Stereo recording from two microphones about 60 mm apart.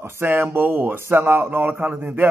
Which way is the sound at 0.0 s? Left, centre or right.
Right.